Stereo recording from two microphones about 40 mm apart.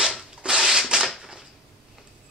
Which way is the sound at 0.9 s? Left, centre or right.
Right.